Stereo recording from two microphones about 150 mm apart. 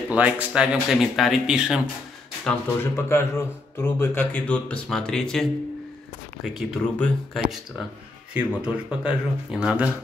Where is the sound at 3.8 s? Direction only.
15° left (ahead or behind).